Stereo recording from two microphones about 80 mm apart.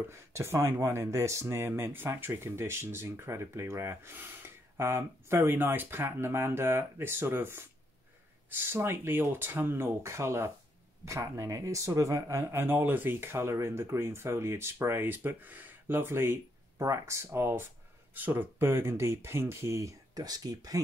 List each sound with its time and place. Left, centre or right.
0.1 s speech: right